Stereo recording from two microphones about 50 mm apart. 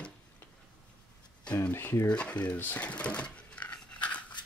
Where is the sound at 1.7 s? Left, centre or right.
Left.